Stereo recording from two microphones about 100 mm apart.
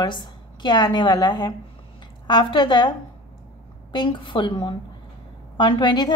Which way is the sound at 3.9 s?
55° left (ahead or behind).